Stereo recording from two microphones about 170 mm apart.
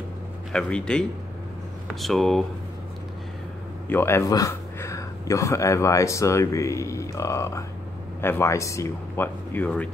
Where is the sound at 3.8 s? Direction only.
15° left (ahead or behind).